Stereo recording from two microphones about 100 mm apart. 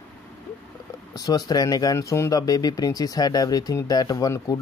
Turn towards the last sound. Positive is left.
turn(degrees=35)  # may be behind; listen again after turning